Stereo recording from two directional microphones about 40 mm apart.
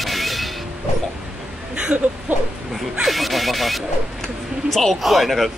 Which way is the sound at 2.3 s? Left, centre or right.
Right.